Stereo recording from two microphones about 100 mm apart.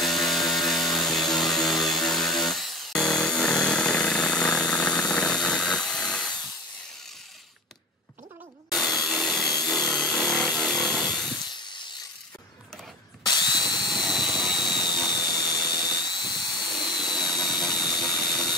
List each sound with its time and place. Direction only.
0.0 s a sound: centre (ahead or behind)
5.1 s tools: 10° left (ahead or behind)
8.7 s tools: centre (ahead or behind)
9.7 s chainsaw: centre (ahead or behind)
13.2 s drill: 45° left (ahead or behind)
14.1 s tools: 50° left (ahead or behind)
17.8 s a sound: 45° left (ahead or behind)